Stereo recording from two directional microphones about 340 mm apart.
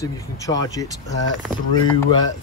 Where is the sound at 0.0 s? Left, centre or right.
Centre.